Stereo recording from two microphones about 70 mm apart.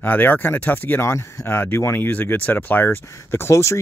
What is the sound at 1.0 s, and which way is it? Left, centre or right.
Speech, left.